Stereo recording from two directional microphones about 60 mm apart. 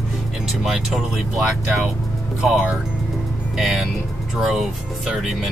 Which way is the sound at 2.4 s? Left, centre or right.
Centre.